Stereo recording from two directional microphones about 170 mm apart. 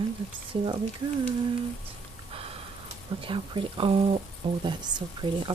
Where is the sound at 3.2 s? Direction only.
30° right (ahead or behind).